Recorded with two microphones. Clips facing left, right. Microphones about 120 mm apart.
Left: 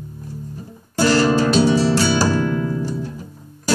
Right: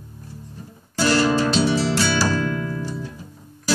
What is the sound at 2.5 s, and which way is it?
Music, 25° left (ahead or behind).